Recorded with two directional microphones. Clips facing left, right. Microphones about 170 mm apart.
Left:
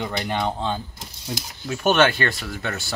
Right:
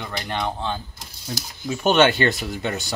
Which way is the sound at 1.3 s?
5° left (ahead or behind).